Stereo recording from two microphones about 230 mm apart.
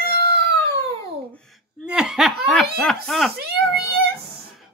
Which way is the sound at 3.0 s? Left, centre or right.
Centre.